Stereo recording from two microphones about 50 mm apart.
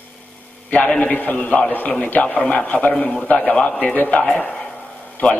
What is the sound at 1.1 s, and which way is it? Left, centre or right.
Speech, left.